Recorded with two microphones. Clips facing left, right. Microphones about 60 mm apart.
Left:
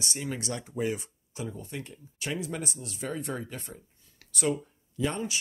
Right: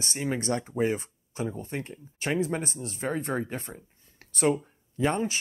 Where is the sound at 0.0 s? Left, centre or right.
Right.